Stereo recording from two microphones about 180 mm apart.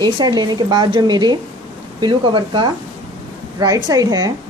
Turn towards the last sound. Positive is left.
turn(degrees=-20)  # may be behind; listen again after turning